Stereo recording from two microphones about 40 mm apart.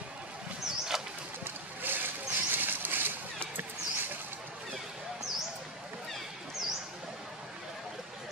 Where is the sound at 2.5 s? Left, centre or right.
Right.